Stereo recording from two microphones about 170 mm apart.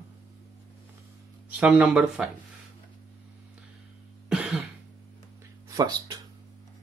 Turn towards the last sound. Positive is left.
turn(degrees=-20)  # may be behind; listen again after turning